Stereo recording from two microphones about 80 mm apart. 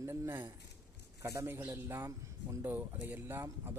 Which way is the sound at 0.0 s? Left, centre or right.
Right.